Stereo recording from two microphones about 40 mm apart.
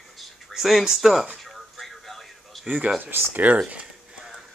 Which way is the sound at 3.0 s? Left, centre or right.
Right.